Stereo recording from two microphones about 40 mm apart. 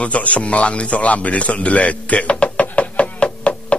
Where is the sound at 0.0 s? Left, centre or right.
Left.